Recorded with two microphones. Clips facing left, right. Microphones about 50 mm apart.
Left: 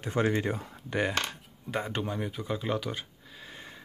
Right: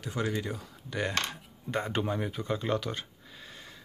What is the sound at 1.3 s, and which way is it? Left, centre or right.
Speech, centre.